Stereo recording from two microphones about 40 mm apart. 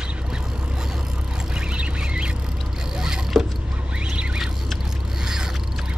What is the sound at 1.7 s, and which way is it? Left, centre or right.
Rodents, right.